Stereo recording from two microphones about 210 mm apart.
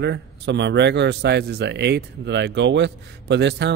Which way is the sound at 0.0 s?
55° right (ahead or behind).